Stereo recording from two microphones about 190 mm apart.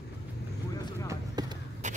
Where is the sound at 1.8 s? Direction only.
40° right (ahead or behind).